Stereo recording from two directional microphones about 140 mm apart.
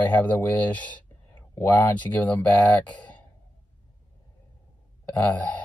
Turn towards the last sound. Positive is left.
turn(degrees=10)  # may be behind; listen again after turning